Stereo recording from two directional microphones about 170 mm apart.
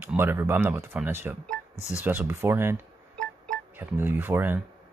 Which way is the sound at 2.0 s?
10° right (ahead or behind).